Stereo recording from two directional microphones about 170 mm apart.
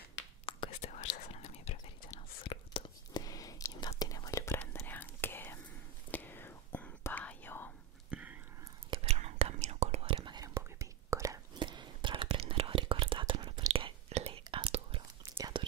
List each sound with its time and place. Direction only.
0.5 s whispering: 35° left (ahead or behind)
2.5 s whispering: 30° left (ahead or behind); by 7.7 s 10° left (ahead or behind)
8.1 s whispering: 10° right (ahead or behind)
8.9 s whispering: 40° right (ahead or behind)